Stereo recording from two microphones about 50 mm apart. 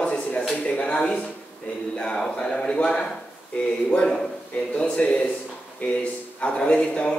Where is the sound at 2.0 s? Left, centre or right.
Centre.